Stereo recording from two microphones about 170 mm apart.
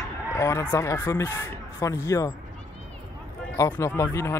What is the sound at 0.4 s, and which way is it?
Speech, 15° left (ahead or behind).